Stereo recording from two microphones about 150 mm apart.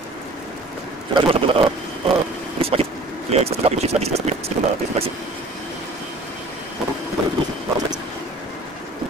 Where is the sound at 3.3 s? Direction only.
45° right (ahead or behind).